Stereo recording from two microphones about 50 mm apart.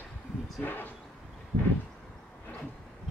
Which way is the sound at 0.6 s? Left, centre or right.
Left.